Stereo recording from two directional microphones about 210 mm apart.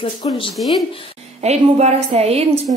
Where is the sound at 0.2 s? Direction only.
25° left (ahead or behind).